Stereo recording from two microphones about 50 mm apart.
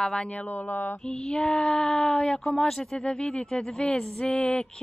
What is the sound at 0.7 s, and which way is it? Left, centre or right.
Mantra, left.